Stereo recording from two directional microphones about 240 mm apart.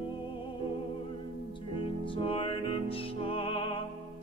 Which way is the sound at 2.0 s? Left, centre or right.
Left.